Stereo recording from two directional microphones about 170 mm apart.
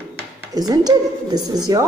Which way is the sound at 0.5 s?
25° right (ahead or behind).